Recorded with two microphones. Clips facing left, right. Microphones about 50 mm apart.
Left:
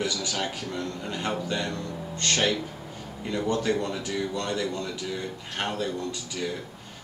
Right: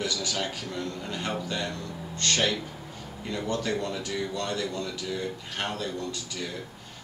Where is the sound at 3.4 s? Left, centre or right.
Centre.